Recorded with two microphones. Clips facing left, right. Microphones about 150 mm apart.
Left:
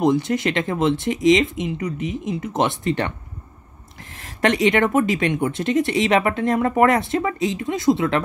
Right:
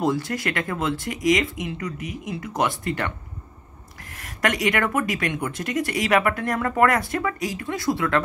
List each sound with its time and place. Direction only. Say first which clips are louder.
0.0 s speech: left 5 dB; 20° left (ahead or behind)
4.2 s speech: left 5 dB; 25° left (ahead or behind)